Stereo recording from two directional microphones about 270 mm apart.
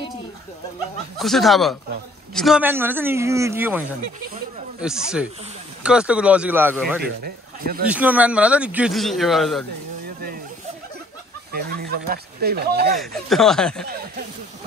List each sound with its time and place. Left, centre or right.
1.1 s speech: centre
7.0 s speech: right
7.8 s speech: centre
10.0 s vehicle: right
11.5 s speech: right
13.0 s speech: centre